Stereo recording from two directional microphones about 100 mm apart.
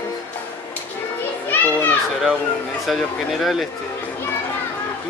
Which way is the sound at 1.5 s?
20° left (ahead or behind).